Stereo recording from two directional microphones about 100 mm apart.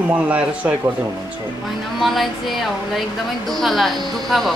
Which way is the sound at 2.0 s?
Centre (ahead or behind).